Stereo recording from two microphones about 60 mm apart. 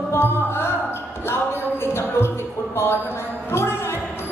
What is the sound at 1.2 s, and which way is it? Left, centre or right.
Speech, left.